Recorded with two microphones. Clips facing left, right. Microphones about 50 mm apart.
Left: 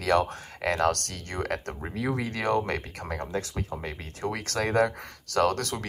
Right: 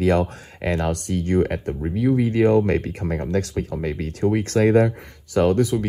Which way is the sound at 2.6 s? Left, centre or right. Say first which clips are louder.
Right 10 dB; right.